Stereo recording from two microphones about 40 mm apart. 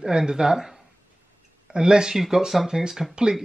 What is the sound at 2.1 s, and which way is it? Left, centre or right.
Speech, centre.